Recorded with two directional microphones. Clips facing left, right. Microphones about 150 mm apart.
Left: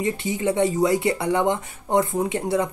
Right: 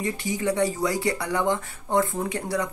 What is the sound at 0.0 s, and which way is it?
Speech, 20° left (ahead or behind).